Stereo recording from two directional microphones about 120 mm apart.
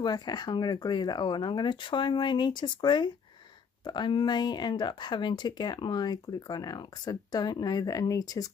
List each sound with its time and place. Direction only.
0.0 s speech: 35° left (ahead or behind)